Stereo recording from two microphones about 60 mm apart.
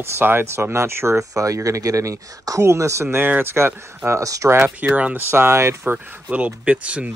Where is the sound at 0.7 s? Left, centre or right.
Right.